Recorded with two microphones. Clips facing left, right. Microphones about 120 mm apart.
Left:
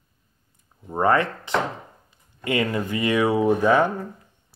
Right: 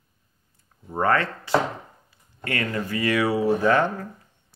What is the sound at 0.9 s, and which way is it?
Speech, 15° left (ahead or behind).